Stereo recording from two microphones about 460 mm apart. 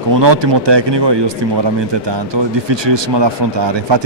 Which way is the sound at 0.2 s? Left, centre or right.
Right.